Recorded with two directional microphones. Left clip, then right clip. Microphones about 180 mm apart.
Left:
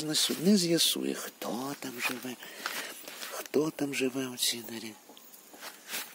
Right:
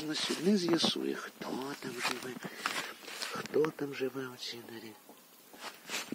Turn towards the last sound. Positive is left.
turn(degrees=-60)  # may be behind; listen again after turning